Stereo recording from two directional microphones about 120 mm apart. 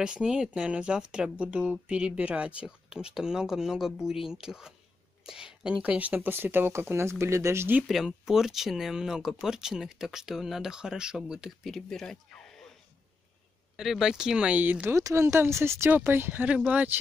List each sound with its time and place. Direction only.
0.0 s speech: 5° right (ahead or behind)
7.8 s speech: centre (ahead or behind)
13.7 s speech: 5° right (ahead or behind)
15.0 s speech: 25° right (ahead or behind)